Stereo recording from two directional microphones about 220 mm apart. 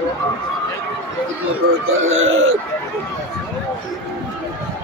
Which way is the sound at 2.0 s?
65° right (ahead or behind).